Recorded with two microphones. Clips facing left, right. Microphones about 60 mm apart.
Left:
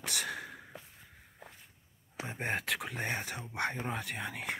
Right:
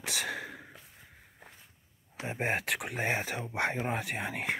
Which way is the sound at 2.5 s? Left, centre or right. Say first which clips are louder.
Right 2 dB; right.